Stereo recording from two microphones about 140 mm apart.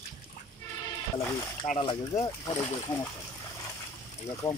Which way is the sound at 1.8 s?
35° left (ahead or behind).